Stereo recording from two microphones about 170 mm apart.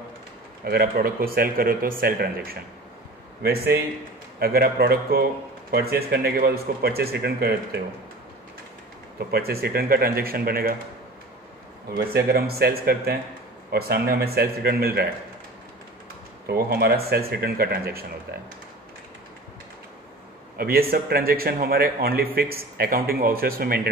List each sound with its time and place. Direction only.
0.7 s a man's voice: 65° right (ahead or behind)
9.2 s a man's voice: 65° right (ahead or behind)
11.9 s a man's voice: 65° right (ahead or behind)
16.4 s a man's voice: 60° right (ahead or behind)
20.5 s a man's voice: 60° right (ahead or behind)